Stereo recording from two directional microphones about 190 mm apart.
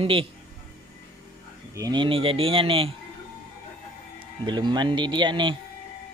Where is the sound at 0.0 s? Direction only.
30° right (ahead or behind).